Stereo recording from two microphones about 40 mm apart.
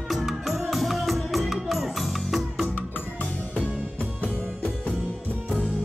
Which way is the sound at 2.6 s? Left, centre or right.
Left.